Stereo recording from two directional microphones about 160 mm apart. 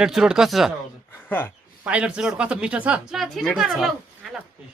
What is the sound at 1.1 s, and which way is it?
Speech, 10° left (ahead or behind).